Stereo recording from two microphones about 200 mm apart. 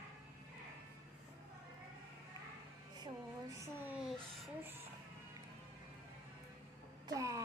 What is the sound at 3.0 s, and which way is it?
Speech, 15° right (ahead or behind).